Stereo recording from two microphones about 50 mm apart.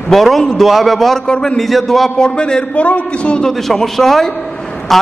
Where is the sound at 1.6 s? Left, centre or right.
Centre.